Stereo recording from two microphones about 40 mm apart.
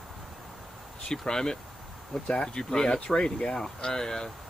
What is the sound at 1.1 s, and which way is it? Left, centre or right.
Speech, centre.